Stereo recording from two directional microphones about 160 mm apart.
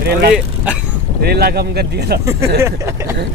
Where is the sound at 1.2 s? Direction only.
80° right.